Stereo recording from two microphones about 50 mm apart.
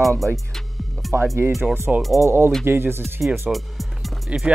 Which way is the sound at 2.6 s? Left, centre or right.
Right.